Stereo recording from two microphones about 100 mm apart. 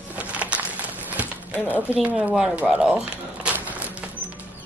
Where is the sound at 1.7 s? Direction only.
15° right (ahead or behind).